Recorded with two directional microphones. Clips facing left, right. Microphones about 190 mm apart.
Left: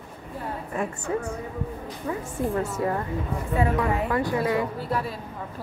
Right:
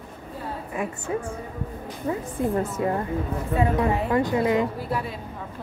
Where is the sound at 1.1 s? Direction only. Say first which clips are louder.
Even; 20° right (ahead or behind).